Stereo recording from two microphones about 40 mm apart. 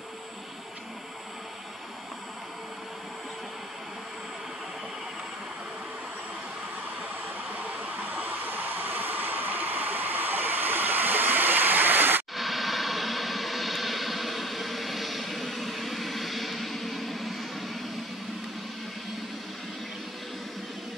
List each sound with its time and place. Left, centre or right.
7.5 s hair dryer: right
12.4 s vehicle: centre